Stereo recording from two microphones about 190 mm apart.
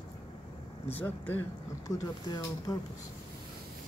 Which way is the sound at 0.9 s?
10° left (ahead or behind).